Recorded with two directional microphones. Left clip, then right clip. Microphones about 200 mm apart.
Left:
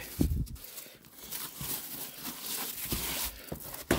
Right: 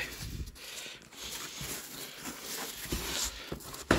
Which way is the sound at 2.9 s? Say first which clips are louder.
Left 1 dB; 55° left (ahead or behind).